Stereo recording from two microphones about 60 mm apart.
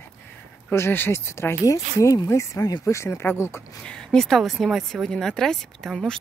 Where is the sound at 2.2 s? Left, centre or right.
Left.